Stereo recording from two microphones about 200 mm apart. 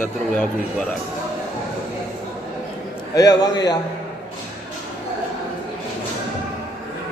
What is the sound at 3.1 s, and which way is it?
Speech, 20° left (ahead or behind).